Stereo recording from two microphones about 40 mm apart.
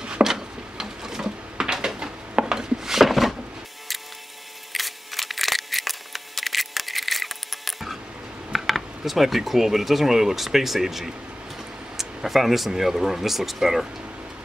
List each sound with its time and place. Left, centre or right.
0.0 s a sound: right
2.0 s wood: centre
4.7 s camera: centre
8.5 s speech: centre